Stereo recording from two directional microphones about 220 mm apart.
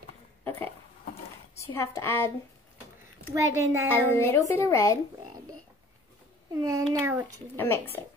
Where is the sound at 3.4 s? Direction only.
15° right (ahead or behind).